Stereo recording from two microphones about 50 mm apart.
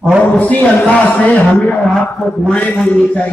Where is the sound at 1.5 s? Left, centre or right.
Left.